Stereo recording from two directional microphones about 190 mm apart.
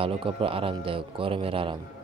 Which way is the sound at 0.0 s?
30° right (ahead or behind).